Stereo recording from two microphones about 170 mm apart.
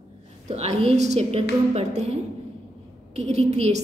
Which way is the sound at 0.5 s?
40° right (ahead or behind).